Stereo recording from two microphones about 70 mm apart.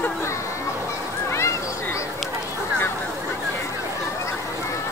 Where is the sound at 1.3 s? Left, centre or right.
Left.